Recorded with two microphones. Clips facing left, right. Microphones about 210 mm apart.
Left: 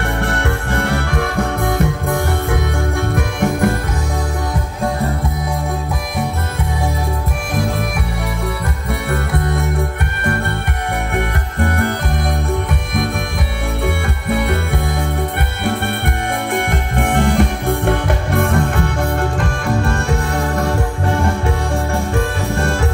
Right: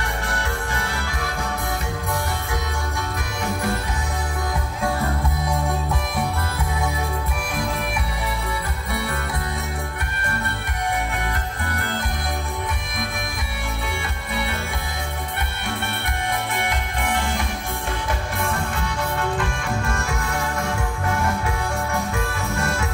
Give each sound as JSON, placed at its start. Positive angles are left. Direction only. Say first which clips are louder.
{"t": 0.2, "sound": "music", "louder": "left 8 dB", "side_deg": 60}
{"t": 9.1, "sound": "music", "louder": "left 9 dB", "side_deg": 60}
{"t": 11.1, "sound": "music", "louder": "left 8 dB", "side_deg": 60}
{"t": 13.8, "sound": "music", "louder": "left 10 dB", "side_deg": 55}
{"t": 16.5, "sound": "music", "louder": "left 8 dB", "side_deg": 55}
{"t": 19.4, "sound": "music", "louder": "left 7 dB", "side_deg": 35}